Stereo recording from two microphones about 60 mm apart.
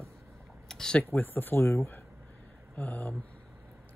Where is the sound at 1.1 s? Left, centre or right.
Left.